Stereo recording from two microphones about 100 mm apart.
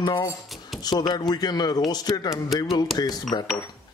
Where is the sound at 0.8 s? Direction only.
45° left (ahead or behind).